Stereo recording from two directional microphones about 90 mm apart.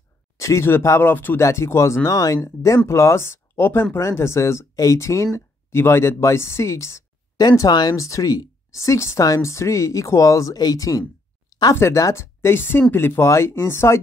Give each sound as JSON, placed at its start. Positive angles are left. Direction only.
{"t": 0.4, "sound": "speech", "side_deg": 30}
{"t": 7.3, "sound": "speech", "side_deg": 45}